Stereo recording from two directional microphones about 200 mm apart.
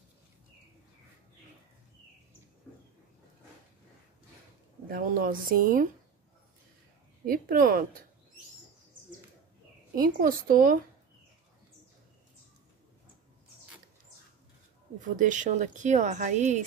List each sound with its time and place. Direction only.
4.8 s speech: 45° right (ahead or behind)
7.2 s speech: 45° right (ahead or behind)
9.9 s speech: 45° right (ahead or behind)
15.0 s speech: 40° right (ahead or behind)